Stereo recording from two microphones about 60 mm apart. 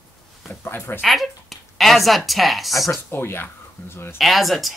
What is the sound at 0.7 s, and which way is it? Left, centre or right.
Speech, left.